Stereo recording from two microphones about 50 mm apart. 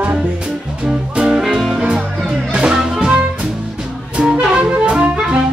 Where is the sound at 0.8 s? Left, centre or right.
Centre.